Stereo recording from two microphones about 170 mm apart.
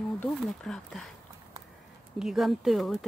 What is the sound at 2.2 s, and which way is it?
Speech, centre (ahead or behind).